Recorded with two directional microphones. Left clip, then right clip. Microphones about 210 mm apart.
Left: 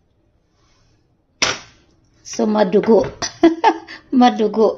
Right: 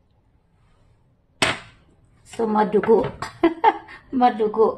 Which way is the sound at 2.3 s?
40° left (ahead or behind).